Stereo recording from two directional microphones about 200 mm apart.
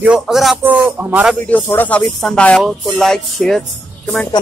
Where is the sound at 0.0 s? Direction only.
5° right (ahead or behind).